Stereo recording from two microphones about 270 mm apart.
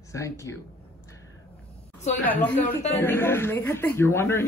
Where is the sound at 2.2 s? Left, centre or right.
Centre.